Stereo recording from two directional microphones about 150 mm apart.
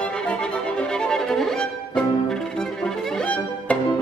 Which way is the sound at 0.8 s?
5° left (ahead or behind).